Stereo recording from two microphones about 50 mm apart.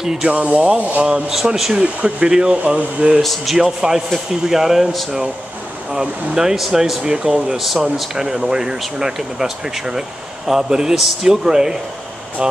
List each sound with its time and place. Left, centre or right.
0.0 s speech: centre
0.3 s speech: right
1.3 s speech: centre
1.7 s speech: right
3.2 s speech: centre
3.5 s speech: centre